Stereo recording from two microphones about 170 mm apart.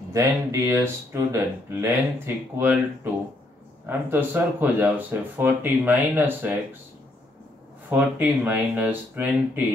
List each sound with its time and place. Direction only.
0.1 s speech: 20° right (ahead or behind)
7.9 s speech: 10° right (ahead or behind)